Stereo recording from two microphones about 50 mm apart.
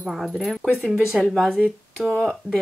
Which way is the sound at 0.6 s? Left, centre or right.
Right.